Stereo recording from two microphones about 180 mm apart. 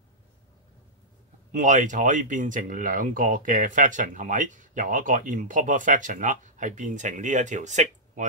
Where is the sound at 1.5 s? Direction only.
45° right (ahead or behind).